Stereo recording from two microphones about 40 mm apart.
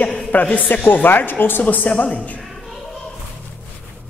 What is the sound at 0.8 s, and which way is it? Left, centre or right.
Speech, left.